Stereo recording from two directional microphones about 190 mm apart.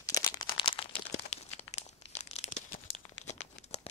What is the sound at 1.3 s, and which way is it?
Crumpling, 35° left (ahead or behind).